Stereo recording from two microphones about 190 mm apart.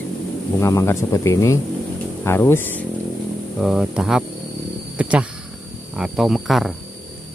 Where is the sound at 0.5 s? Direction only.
15° left (ahead or behind).